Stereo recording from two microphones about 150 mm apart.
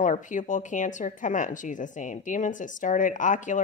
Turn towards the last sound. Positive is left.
turn(degrees=55)  # may be behind; listen again after turning